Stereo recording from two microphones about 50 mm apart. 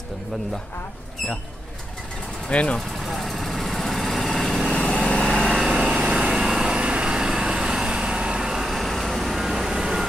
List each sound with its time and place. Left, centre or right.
2.5 s speech: left
3.0 s vehicle: centre
5.1 s lawn mower: centre
5.7 s vehicle: centre